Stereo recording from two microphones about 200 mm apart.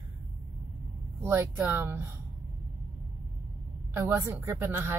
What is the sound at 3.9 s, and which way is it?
Speech, 10° right (ahead or behind).